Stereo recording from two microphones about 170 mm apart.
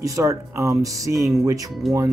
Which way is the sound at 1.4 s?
20° right (ahead or behind).